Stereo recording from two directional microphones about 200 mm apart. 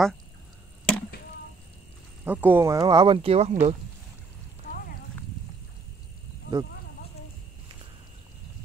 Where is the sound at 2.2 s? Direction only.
10° right (ahead or behind); by 3.8 s 30° right (ahead or behind).